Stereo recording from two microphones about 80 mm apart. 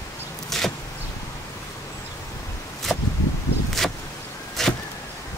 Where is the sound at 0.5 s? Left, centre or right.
Centre.